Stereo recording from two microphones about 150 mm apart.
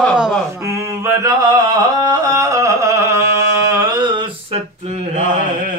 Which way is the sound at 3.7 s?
25° right (ahead or behind).